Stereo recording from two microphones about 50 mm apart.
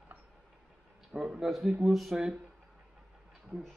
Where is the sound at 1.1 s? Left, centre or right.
Centre.